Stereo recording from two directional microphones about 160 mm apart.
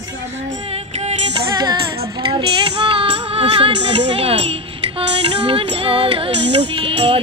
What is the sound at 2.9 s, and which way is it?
Music, 35° right (ahead or behind).